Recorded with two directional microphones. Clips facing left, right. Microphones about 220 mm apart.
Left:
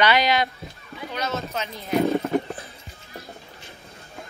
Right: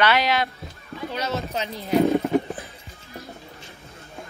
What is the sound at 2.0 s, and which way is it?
Horse, 15° right (ahead or behind).